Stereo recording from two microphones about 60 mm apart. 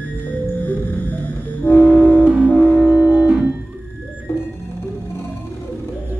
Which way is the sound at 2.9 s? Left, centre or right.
Centre.